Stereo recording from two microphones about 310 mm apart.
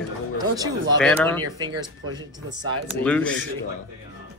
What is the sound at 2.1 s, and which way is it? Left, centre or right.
Speech, centre.